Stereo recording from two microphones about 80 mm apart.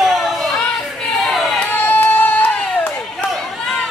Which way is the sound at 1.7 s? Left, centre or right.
Left.